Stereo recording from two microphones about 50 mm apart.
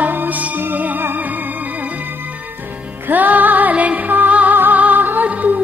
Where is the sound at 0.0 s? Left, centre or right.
Right.